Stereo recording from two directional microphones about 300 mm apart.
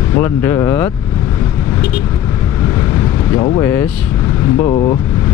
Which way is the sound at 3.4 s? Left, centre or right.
Centre.